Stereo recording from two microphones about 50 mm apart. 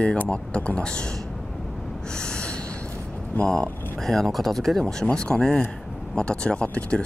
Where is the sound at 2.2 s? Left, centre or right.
Centre.